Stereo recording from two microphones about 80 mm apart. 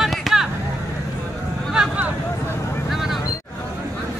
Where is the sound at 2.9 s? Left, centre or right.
Centre.